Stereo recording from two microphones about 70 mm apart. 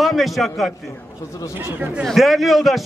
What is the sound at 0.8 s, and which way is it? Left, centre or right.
Speech, left.